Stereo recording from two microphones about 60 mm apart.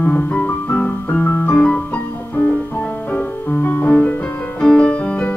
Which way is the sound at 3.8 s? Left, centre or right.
Centre.